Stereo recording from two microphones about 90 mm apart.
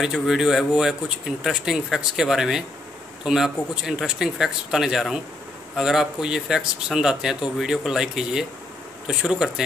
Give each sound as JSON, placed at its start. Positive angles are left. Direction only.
{"t": 0.0, "sound": "speech", "side_deg": -5}